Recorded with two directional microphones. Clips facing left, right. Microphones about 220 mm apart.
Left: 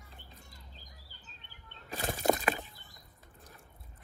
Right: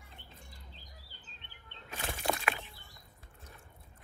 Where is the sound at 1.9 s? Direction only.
45° left (ahead or behind).